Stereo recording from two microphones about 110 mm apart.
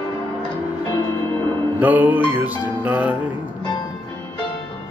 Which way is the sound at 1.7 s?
15° right (ahead or behind).